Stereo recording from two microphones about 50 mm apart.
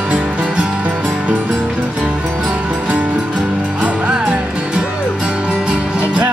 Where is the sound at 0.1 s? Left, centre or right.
Right.